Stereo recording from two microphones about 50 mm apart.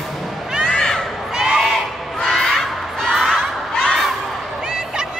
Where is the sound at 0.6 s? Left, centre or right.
Centre.